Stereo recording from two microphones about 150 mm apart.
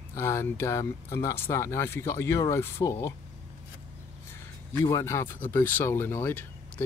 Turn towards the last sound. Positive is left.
turn(degrees=15)  # may be behind; listen again after turning